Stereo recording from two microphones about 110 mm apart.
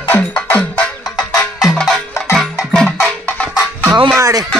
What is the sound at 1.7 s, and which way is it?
Music, 5° left (ahead or behind).